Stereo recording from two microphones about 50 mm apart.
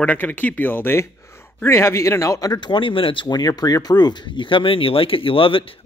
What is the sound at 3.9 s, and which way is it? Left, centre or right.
Speech, left.